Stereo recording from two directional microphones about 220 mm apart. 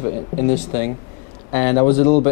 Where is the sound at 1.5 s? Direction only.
20° left (ahead or behind).